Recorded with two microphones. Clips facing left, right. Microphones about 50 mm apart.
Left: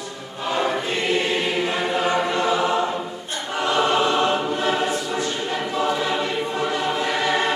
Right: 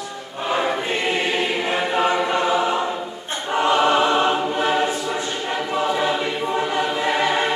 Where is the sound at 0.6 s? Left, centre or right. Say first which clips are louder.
Left 1 dB; right.